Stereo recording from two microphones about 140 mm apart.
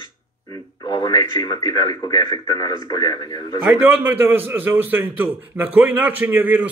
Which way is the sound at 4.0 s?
15° right (ahead or behind).